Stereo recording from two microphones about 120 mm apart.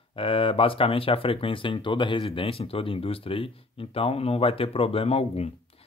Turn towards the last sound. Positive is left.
turn(degrees=50)  # may be behind; listen again after turning